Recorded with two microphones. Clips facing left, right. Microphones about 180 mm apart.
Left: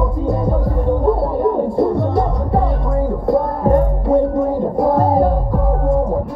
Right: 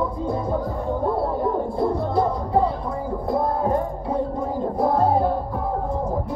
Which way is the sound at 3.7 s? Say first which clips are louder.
Left 9 dB; 80° left.